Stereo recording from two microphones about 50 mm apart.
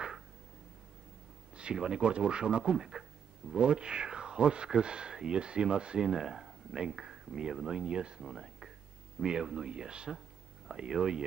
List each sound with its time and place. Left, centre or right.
1.6 s speech: centre